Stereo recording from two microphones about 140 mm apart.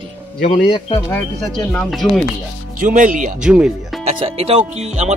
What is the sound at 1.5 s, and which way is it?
Speech, 5° left (ahead or behind).